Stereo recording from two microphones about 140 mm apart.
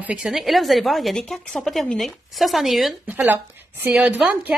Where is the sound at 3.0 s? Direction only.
15° right (ahead or behind).